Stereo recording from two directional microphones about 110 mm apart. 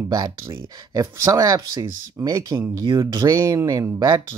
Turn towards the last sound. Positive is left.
turn(degrees=-35)  # may be behind; listen again after turning